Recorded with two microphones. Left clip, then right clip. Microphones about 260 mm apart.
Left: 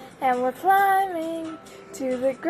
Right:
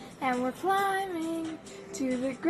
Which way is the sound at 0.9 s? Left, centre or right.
Right.